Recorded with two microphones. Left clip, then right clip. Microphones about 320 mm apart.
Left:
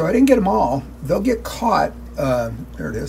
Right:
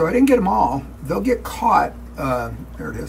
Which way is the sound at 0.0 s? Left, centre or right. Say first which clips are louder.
Left 1 dB; centre.